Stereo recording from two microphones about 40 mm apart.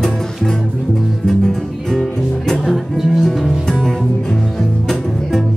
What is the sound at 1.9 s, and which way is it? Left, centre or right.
Music, centre.